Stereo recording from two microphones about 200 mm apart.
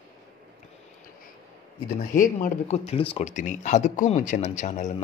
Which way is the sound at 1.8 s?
40° left (ahead or behind).